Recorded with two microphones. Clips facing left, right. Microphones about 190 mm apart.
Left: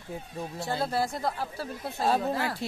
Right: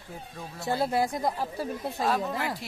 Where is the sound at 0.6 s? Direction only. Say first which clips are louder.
Right 3 dB; 20° right (ahead or behind).